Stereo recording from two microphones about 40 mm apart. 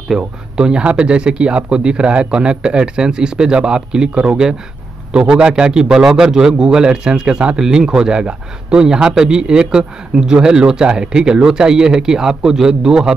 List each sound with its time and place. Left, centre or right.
0.2 s speech: right